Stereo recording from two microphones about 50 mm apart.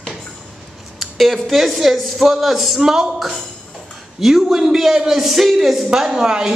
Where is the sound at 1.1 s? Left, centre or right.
Centre.